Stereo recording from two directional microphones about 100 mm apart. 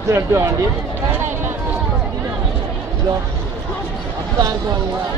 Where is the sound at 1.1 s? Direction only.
20° right (ahead or behind).